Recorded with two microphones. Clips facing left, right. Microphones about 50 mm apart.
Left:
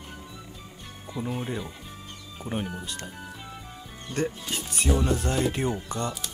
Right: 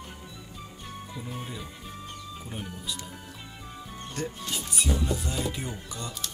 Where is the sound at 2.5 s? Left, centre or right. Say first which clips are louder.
Left 6 dB; left.